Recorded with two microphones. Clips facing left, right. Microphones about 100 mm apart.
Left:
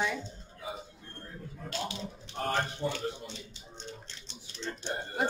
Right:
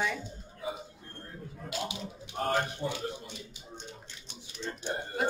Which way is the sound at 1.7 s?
15° right (ahead or behind).